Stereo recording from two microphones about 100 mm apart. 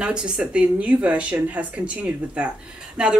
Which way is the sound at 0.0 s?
10° right (ahead or behind).